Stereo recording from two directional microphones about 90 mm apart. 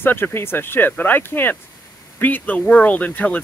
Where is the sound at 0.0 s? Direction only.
25° left (ahead or behind).